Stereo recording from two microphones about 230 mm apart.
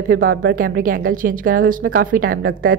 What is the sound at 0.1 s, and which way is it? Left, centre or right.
A woman's voice, right.